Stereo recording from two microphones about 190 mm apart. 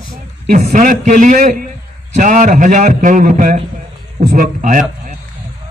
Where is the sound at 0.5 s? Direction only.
40° right (ahead or behind).